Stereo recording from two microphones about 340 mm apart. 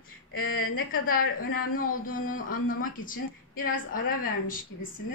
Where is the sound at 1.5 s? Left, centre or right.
Left.